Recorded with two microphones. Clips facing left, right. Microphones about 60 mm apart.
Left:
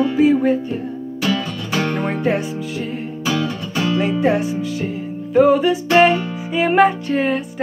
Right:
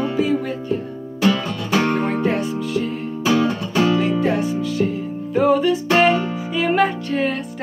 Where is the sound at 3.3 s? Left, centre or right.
Right.